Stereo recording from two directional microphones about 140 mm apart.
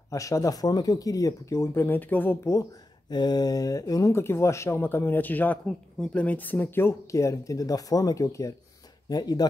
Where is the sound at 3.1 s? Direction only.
30° left (ahead or behind).